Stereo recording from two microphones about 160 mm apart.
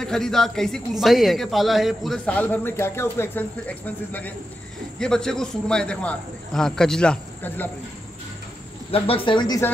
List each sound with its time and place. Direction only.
0.0 s a man's voice: 5° left (ahead or behind)
8.9 s speech: 35° left (ahead or behind)